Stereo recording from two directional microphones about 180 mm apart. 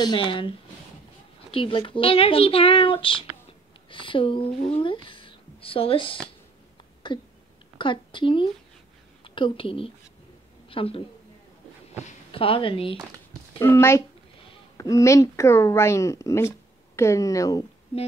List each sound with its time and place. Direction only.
0.0 s speech: 25° left (ahead or behind)
1.5 s a child's voice: 30° left (ahead or behind)
13.6 s speech: 15° left (ahead or behind)